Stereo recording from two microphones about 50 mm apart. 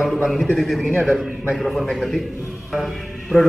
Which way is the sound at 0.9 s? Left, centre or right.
Right.